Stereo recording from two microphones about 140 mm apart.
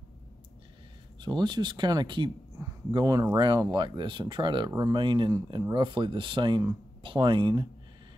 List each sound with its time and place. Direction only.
1.2 s speech: 30° right (ahead or behind)